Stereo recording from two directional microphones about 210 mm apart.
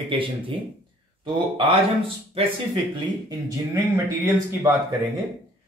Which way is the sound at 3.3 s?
15° right (ahead or behind).